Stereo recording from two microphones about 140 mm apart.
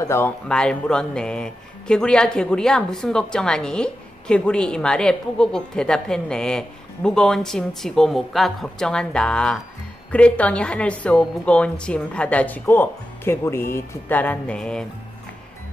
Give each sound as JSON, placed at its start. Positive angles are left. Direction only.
{"t": 0.0, "sound": "speech", "side_deg": 20}
{"t": 0.5, "sound": "a woman's voice", "side_deg": 5}